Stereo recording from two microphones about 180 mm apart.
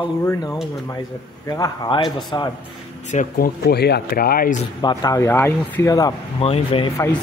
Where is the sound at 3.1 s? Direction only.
50° left (ahead or behind).